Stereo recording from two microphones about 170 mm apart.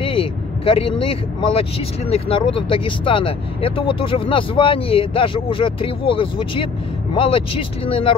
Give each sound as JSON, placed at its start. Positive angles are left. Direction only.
{"t": 0.0, "sound": "speech", "side_deg": 30}